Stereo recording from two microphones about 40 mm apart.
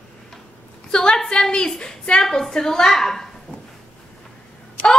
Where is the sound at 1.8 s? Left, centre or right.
Left.